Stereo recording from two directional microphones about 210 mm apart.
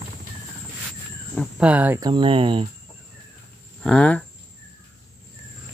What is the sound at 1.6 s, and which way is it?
Speech, 5° right (ahead or behind).